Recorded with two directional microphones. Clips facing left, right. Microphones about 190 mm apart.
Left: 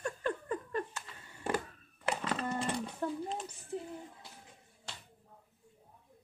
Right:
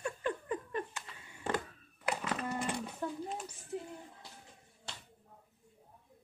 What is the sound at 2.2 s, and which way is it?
Livestock, 5° right (ahead or behind).